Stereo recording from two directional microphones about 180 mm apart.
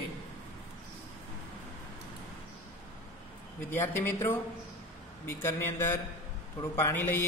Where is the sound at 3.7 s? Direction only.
10° left (ahead or behind).